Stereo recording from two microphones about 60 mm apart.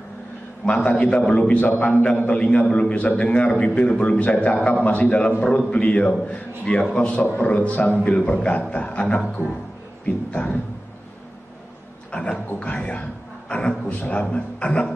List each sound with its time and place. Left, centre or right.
0.8 s a man's voice: centre
12.1 s a man's voice: centre